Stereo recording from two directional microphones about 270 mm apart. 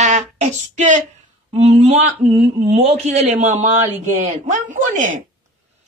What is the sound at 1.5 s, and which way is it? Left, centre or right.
Speech, right.